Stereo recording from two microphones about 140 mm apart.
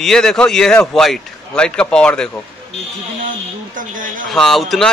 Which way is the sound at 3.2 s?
70° right (ahead or behind).